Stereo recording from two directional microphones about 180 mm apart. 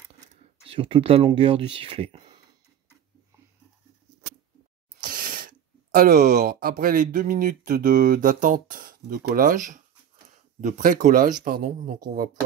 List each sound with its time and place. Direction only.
0.7 s speech: 30° right (ahead or behind)
5.0 s speech: 50° right (ahead or behind)